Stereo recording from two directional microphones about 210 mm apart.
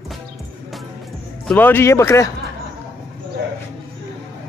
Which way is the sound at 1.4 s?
10° left (ahead or behind).